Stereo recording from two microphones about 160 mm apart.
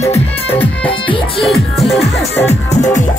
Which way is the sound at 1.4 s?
Centre (ahead or behind).